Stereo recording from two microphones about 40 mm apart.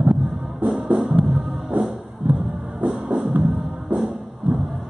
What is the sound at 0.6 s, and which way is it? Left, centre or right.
Drum, right.